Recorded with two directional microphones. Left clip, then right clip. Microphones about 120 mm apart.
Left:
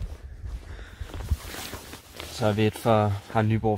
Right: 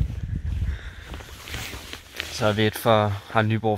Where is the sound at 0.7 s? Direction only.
20° left (ahead or behind).